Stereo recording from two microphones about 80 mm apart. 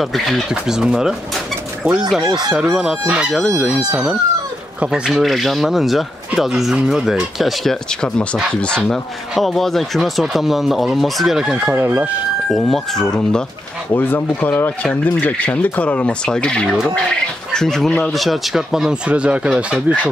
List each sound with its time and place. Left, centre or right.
0.0 s speech: centre
2.2 s chicken: right
2.5 s speech: centre
5.1 s speech: centre
8.5 s speech: centre
11.7 s speech: right
12.4 s speech: centre
13.9 s speech: left; by 20.1 s centre